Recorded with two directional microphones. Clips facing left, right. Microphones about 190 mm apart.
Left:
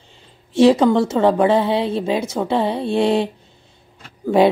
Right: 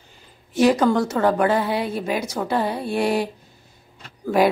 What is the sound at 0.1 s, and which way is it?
A woman's voice, 25° left (ahead or behind).